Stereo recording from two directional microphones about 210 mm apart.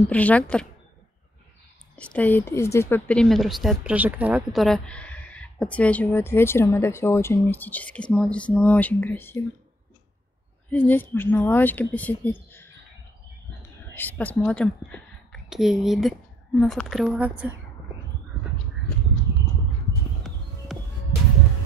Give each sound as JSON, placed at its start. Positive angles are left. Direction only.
{"t": 0.1, "sound": "speech", "side_deg": 5}
{"t": 2.0, "sound": "a woman's voice", "side_deg": 5}
{"t": 10.7, "sound": "speech", "side_deg": 10}
{"t": 13.9, "sound": "a woman's voice", "side_deg": 10}
{"t": 20.7, "sound": "music", "side_deg": 0}